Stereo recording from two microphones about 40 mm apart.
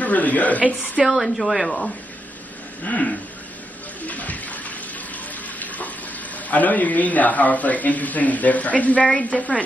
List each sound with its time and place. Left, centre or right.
0.0 s a man's voice: left
1.0 s a woman's voice: centre
2.8 s speech: left
4.0 s bathtub: left
6.3 s a man's voice: left